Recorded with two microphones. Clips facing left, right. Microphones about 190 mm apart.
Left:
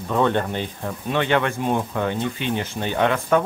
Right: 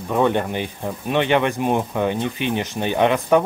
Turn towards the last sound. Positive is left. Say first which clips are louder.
# right 3 dB
turn(degrees=-15)  # may be behind; listen again after turning